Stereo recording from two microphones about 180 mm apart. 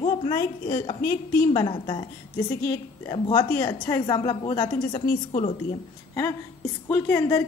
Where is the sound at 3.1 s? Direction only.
20° left (ahead or behind).